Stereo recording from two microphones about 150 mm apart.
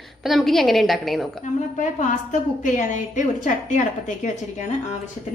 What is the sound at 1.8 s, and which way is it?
A woman's voice, 55° left (ahead or behind).